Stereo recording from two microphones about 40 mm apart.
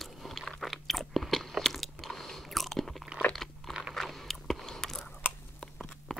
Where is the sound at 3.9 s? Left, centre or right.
Centre.